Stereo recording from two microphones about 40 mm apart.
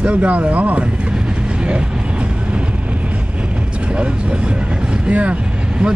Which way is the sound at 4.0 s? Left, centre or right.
Right.